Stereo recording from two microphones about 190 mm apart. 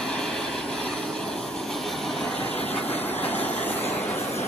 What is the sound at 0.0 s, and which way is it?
Vehicle, 5° left (ahead or behind).